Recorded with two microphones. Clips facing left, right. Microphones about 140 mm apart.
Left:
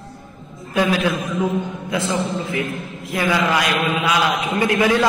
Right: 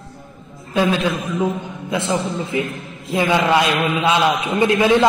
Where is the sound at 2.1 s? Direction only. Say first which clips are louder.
Right 1 dB; 20° right (ahead or behind).